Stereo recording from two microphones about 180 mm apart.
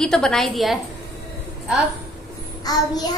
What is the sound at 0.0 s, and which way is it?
Speech, 5° left (ahead or behind).